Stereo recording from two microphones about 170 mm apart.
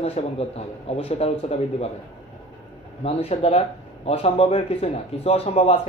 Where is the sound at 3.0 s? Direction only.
35° left (ahead or behind).